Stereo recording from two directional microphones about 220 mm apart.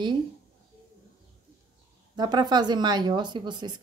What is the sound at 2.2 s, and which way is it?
A woman's voice, 20° right (ahead or behind).